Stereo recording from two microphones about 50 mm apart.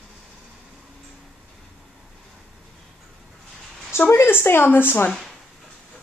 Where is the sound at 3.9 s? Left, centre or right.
Left.